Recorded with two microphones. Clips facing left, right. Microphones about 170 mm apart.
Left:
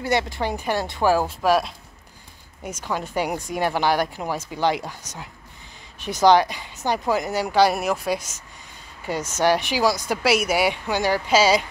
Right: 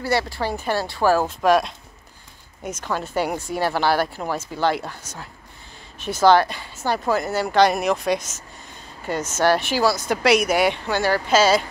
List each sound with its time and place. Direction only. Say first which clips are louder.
0.0 s a woman's voice: even; 20° left (ahead or behind)